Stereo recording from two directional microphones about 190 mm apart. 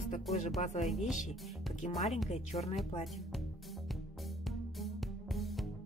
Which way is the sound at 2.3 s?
35° left (ahead or behind).